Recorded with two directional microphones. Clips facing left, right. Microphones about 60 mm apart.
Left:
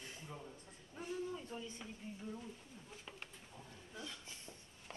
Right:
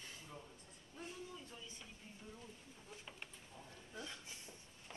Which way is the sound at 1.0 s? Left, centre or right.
Left.